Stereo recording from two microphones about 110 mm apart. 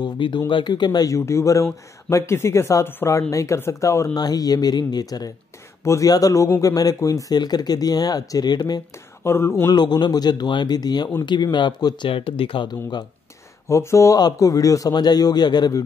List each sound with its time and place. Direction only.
0.0 s speech: 45° left (ahead or behind)
9.2 s speech: 20° left (ahead or behind)
9.7 s speech: 40° left (ahead or behind)
13.7 s speech: 25° left (ahead or behind)